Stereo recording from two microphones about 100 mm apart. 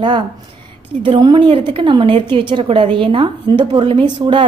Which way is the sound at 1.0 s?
55° right (ahead or behind).